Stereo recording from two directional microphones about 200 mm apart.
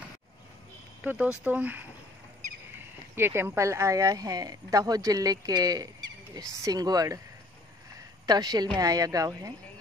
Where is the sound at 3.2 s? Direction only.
10° right (ahead or behind).